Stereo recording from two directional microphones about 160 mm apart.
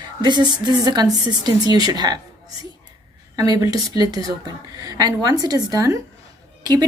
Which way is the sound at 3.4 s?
20° right (ahead or behind).